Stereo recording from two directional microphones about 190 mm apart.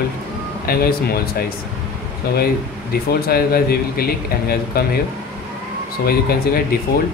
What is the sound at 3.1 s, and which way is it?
Speech, 55° left (ahead or behind).